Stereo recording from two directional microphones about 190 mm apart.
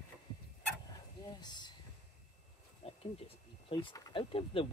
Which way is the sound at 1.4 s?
25° left (ahead or behind).